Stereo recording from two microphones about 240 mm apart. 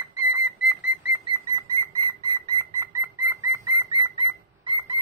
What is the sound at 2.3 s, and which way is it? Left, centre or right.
Bird, centre.